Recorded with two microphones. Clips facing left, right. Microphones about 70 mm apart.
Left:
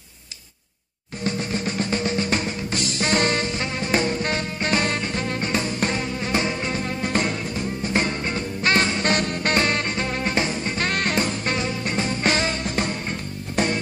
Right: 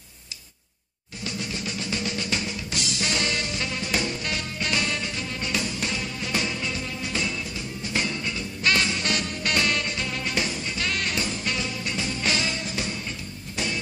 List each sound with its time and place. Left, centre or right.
1.2 s music: left